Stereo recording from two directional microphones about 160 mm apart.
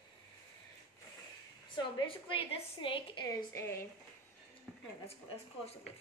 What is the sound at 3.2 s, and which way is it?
Speech, 20° left (ahead or behind).